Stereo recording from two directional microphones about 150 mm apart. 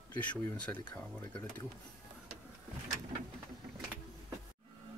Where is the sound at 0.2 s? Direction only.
10° left (ahead or behind).